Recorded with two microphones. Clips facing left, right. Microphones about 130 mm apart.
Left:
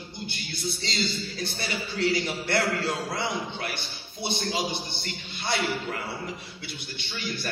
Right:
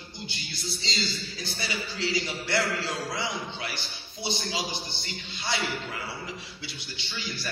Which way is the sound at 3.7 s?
55° left (ahead or behind).